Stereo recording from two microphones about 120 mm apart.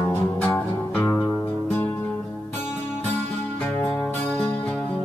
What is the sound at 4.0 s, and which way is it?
Music, 15° left (ahead or behind).